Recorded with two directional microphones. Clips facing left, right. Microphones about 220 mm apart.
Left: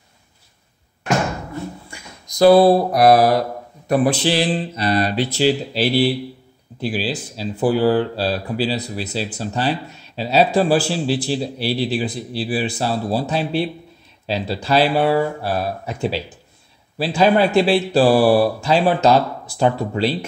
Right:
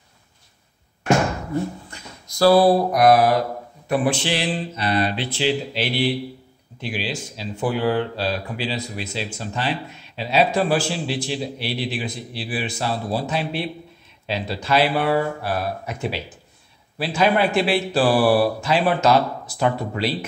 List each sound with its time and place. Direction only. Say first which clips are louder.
1.9 s speech: left 1 dB; 15° left (ahead or behind); by 20.1 s 30° left (ahead or behind)